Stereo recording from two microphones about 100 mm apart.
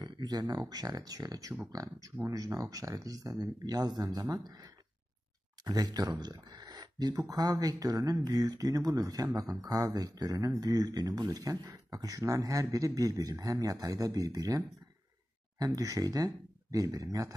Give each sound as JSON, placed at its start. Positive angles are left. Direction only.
{"t": 0.0, "sound": "speech", "side_deg": -45}
{"t": 15.6, "sound": "speech", "side_deg": -35}